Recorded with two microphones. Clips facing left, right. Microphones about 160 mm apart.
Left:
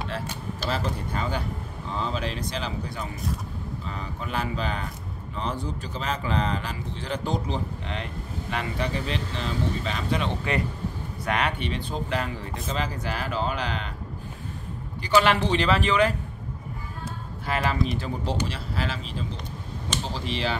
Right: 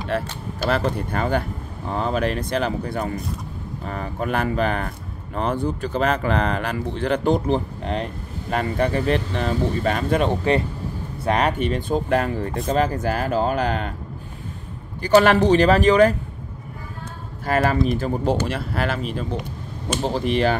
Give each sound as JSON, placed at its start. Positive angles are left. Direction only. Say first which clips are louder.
{"t": 0.1, "sound": "speech", "louder": "right 6 dB", "side_deg": -60}
{"t": 11.2, "sound": "speech", "louder": "right 7 dB", "side_deg": -40}
{"t": 15.0, "sound": "speech", "louder": "right 6 dB", "side_deg": -45}
{"t": 17.5, "sound": "speech", "louder": "right 7 dB", "side_deg": -45}